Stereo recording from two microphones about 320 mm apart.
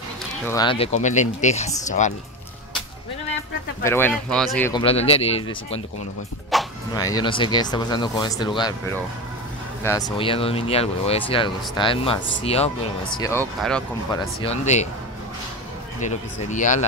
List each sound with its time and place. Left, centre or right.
0.5 s speech: centre
3.8 s speech: centre
6.5 s music: centre
6.9 s speech: centre
9.8 s speech: centre
13.1 s speech: centre
14.1 s speech: centre
16.0 s speech: left